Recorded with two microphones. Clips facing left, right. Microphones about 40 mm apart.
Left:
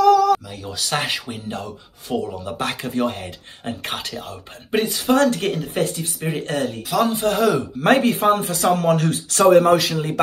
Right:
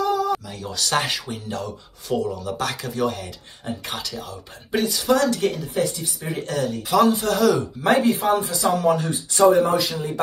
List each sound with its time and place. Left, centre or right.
0.0 s a sound: left
0.6 s speech: centre
1.3 s speech: left
7.8 s speech: left